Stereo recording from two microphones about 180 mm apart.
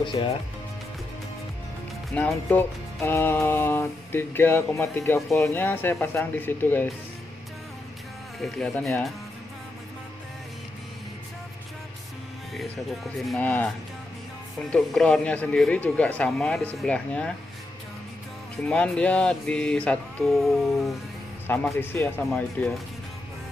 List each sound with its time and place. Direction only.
0.0 s speech: 25° left (ahead or behind)
2.1 s speech: 10° left (ahead or behind)
8.4 s speech: centre (ahead or behind)
13.2 s speech: 5° left (ahead or behind)
14.7 s speech: 5° left (ahead or behind)
18.7 s speech: 5° left (ahead or behind)